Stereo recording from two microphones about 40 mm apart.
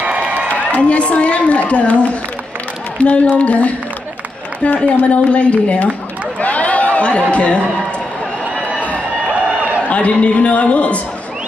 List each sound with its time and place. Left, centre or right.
0.5 s a woman's voice: left
5.1 s a man's voice: left
6.4 s a sound: left
9.8 s a man's voice: left